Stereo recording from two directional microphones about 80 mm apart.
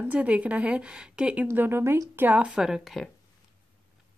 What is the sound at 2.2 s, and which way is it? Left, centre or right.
Speech, centre.